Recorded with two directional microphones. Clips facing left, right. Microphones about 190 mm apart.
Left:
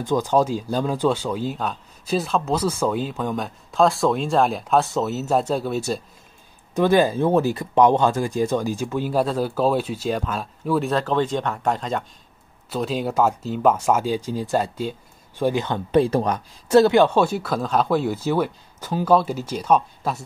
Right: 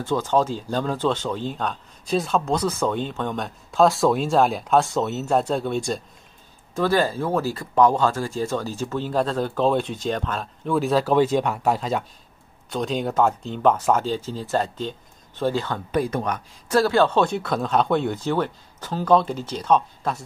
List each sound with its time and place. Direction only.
0.0 s speech: 15° left (ahead or behind)
6.7 s speech: 20° left (ahead or behind)